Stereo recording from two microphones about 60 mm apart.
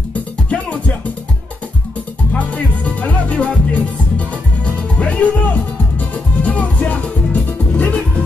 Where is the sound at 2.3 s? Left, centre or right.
Left.